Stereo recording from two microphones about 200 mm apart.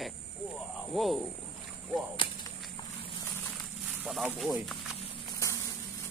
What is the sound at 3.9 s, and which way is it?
Speech, 5° right (ahead or behind).